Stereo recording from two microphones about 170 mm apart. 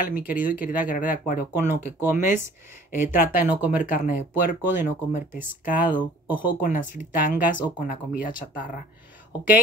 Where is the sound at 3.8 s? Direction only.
50° left (ahead or behind).